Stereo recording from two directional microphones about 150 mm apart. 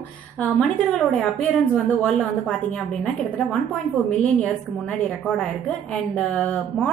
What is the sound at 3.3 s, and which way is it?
Speech, centre (ahead or behind).